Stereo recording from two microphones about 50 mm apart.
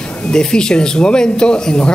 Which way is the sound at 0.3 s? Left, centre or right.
Centre.